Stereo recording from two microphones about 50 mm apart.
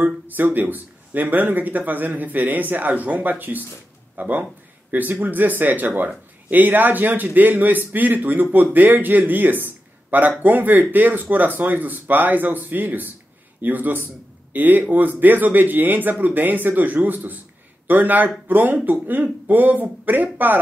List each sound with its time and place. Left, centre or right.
0.0 s speech: right